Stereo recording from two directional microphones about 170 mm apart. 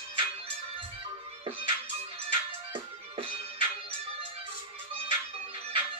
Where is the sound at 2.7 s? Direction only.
35° right (ahead or behind).